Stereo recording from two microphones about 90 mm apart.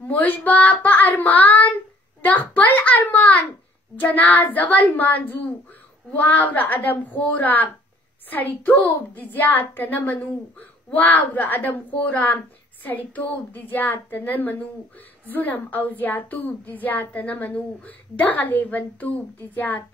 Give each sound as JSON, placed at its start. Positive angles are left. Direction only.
{"t": 0.1, "sound": "a woman's voice", "side_deg": 20}